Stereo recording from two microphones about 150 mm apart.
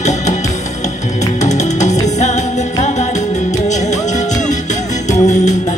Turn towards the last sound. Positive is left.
turn(degrees=55)  # may be behind; listen again after turning